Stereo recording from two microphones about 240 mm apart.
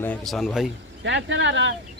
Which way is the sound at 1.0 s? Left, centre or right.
Right.